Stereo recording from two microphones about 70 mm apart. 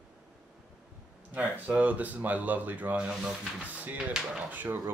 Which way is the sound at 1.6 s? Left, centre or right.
Right.